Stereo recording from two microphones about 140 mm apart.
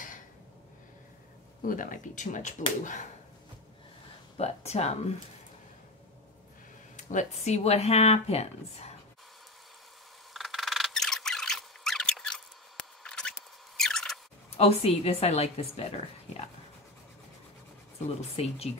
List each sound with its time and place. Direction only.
1.6 s speech: 70° left (ahead or behind)
4.4 s speech: 50° left (ahead or behind)
7.0 s speech: 60° left (ahead or behind)
10.3 s a sound: centre (ahead or behind)
13.7 s rodents: 5° left (ahead or behind)
14.6 s speech: 50° left (ahead or behind)
18.0 s speech: 50° left (ahead or behind)